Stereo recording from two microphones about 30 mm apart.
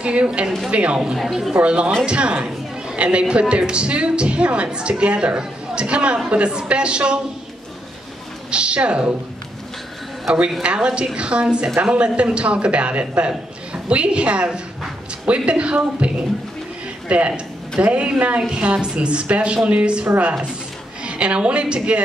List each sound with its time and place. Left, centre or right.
0.0 s a woman's voice: right
1.1 s speech: centre
1.5 s speech: right
8.5 s a woman's voice: right
10.6 s a woman's voice: right
18.5 s a woman's voice: right